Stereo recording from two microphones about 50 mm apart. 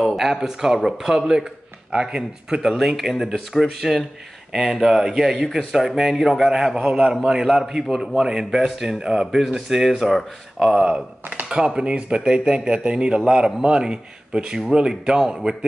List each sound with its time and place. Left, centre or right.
0.0 s speech: centre
11.4 s speech: centre